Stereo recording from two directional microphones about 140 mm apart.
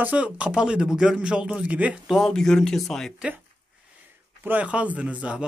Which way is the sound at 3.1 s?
10° right (ahead or behind).